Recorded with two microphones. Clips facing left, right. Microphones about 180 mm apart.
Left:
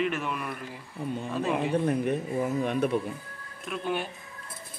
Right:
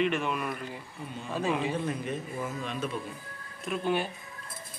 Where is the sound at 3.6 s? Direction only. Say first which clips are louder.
Right 2 dB; centre (ahead or behind).